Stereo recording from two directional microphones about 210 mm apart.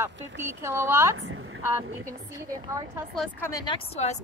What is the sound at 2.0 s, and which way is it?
Speech, 15° right (ahead or behind).